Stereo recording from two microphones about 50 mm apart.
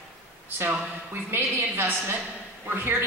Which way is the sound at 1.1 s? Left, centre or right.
Right.